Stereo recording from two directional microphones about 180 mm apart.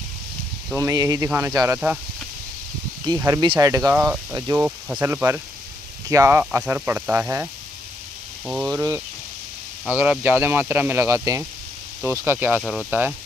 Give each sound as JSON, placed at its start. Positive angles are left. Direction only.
{"t": 0.7, "sound": "speech", "side_deg": -15}
{"t": 3.2, "sound": "speech", "side_deg": -20}
{"t": 8.6, "sound": "speech", "side_deg": -15}